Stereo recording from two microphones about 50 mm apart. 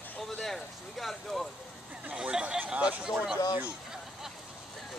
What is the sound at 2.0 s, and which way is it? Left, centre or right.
Speech, right.